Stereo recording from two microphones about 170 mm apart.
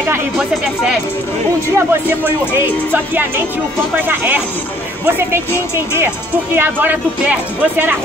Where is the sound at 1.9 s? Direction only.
10° right (ahead or behind).